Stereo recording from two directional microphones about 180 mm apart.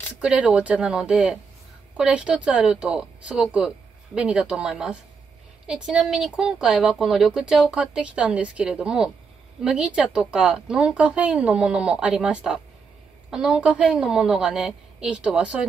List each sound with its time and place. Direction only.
0.2 s speech: 5° right (ahead or behind)